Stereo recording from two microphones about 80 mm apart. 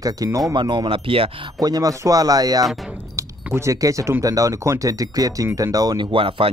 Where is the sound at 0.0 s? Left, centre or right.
Right.